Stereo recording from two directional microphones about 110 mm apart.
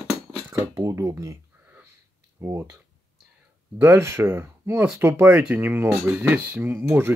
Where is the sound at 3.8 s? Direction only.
25° right (ahead or behind).